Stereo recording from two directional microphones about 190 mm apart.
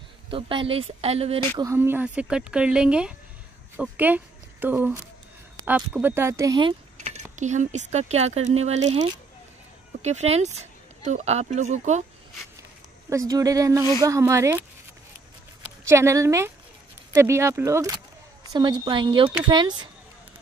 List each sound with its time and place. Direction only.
0.3 s speech: 25° right (ahead or behind)
1.6 s speech: 15° right (ahead or behind)
7.3 s speech: 40° right (ahead or behind)
10.0 s speech: 35° right (ahead or behind)
13.1 s speech: 15° right (ahead or behind)
15.9 s speech: 15° right (ahead or behind)